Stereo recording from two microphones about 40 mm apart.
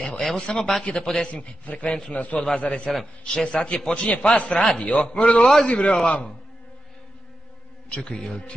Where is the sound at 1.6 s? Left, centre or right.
Left.